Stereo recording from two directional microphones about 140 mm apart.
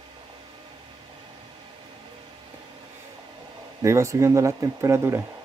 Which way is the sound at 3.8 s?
20° right (ahead or behind).